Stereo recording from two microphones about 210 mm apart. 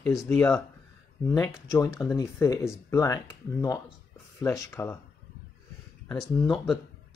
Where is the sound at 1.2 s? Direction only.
15° left (ahead or behind).